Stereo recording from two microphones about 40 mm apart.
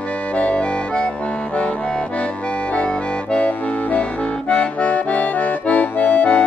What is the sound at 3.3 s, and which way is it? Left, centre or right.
Accordion, left.